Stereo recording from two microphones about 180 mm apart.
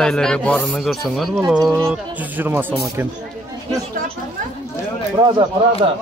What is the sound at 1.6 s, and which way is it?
Speech, 20° right (ahead or behind).